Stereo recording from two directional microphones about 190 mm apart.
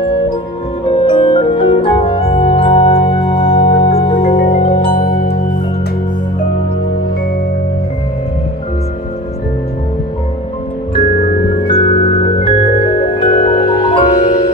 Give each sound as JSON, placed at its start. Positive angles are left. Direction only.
{"t": 0.8, "sound": "music", "side_deg": 25}
{"t": 11.0, "sound": "music", "side_deg": 50}
{"t": 11.6, "sound": "music", "side_deg": 30}